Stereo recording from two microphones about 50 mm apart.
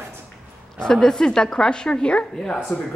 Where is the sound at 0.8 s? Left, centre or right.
Centre.